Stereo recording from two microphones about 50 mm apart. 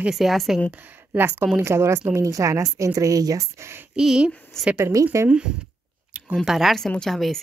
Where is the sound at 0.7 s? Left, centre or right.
Right.